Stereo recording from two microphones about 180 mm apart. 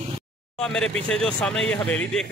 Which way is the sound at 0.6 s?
5° left (ahead or behind).